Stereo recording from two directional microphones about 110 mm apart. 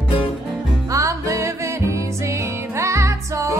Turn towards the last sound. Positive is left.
turn(degrees=-25)  # may be behind; listen again after turning